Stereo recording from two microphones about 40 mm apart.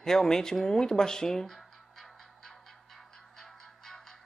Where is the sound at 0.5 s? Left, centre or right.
Centre.